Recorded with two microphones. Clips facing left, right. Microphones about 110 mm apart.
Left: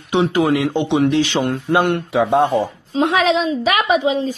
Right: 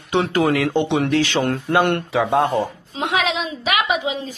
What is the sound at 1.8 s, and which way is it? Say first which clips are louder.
Speech: left 1 dB; 5° left (ahead or behind).